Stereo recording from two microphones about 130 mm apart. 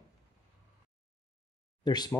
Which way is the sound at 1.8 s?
30° left (ahead or behind).